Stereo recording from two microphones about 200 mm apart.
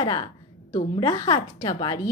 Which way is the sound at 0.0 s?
25° left (ahead or behind).